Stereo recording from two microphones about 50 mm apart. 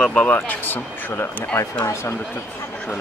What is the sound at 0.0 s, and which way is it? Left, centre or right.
Speech, left.